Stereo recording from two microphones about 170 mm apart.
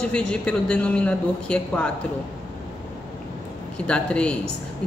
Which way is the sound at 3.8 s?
5° left (ahead or behind).